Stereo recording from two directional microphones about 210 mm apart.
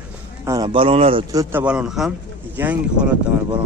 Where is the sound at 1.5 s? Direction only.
5° right (ahead or behind).